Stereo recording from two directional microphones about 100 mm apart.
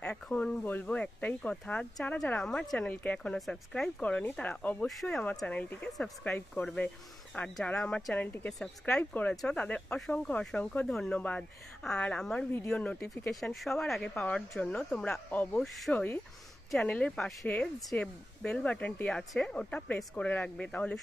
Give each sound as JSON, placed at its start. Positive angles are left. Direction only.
{"t": 0.0, "sound": "speech", "side_deg": 10}
{"t": 2.9, "sound": "speech", "side_deg": 15}
{"t": 3.3, "sound": "speech", "side_deg": 5}
{"t": 8.5, "sound": "speech", "side_deg": 5}
{"t": 13.3, "sound": "speech", "side_deg": 0}